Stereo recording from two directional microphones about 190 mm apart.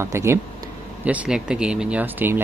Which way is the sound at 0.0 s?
15° right (ahead or behind).